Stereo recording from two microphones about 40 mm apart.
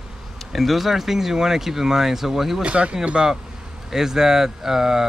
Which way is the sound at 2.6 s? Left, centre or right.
Right.